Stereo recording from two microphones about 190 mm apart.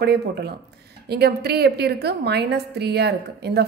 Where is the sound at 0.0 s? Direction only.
60° right (ahead or behind).